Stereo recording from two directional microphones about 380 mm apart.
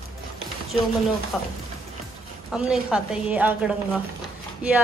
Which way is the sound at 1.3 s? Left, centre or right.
Centre.